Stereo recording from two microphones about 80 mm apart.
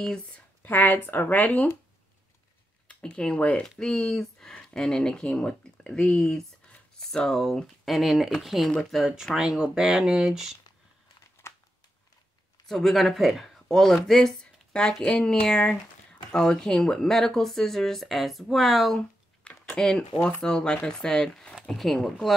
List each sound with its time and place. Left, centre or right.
0.0 s speech: centre
0.6 s speech: left
2.9 s speech: centre
11.4 s a sound: left
12.6 s speech: centre
18.9 s a sound: centre
20.4 s speech: centre